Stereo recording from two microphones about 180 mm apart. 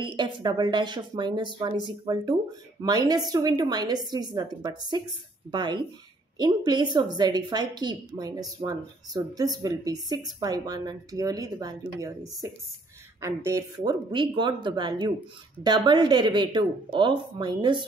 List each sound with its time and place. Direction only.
0.0 s a woman's voice: 25° right (ahead or behind)